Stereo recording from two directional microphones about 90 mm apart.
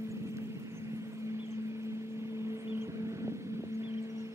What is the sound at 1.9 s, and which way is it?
Vehicle, 30° right (ahead or behind).